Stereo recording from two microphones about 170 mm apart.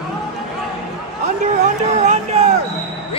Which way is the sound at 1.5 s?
45° right (ahead or behind).